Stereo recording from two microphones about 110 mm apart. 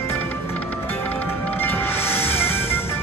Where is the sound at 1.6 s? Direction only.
20° left (ahead or behind).